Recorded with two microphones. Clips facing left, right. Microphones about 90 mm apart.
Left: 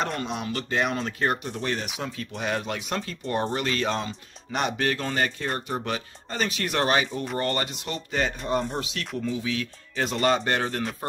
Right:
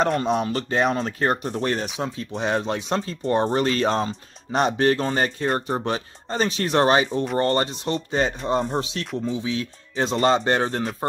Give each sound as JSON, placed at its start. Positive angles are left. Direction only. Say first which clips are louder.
{"t": 0.2, "sound": "speech", "louder": "right 7 dB", "side_deg": -35}
{"t": 2.0, "sound": "speech", "louder": "right 5 dB", "side_deg": -30}